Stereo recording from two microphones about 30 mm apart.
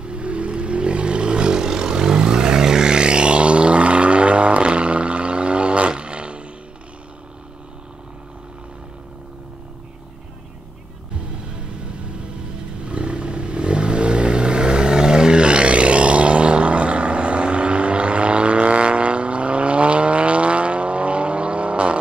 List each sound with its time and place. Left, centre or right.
0.0 s vehicle: right
12.8 s vehicle: right